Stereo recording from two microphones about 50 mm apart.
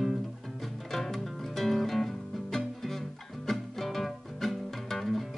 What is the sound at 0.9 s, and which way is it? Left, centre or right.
Music, centre.